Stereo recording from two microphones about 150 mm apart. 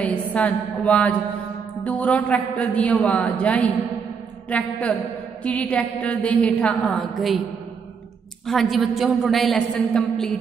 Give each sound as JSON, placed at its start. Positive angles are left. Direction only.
{"t": 0.0, "sound": "a woman's voice", "side_deg": 10}
{"t": 8.5, "sound": "a woman's voice", "side_deg": 0}